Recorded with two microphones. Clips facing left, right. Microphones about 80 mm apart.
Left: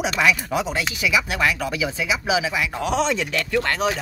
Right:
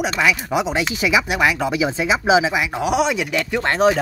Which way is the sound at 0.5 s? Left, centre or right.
Centre.